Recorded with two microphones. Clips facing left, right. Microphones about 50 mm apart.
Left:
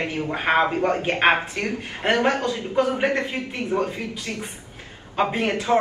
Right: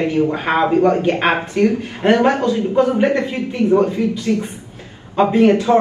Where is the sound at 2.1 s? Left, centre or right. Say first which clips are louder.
Right 7 dB; right.